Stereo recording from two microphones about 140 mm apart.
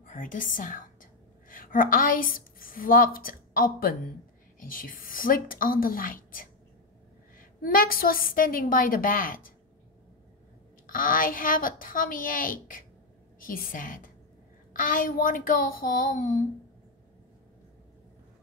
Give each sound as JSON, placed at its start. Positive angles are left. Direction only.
{"t": 0.0, "sound": "a woman's voice", "side_deg": 70}
{"t": 4.6, "sound": "a woman's voice", "side_deg": 80}
{"t": 10.9, "sound": "a woman's voice", "side_deg": 80}